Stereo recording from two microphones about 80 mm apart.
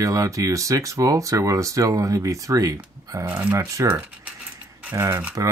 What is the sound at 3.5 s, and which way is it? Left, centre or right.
Speech, right.